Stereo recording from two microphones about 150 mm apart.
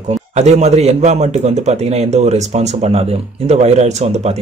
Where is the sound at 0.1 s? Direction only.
50° right (ahead or behind).